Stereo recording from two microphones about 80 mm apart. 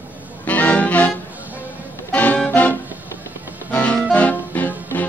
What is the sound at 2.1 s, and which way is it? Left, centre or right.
Music, centre.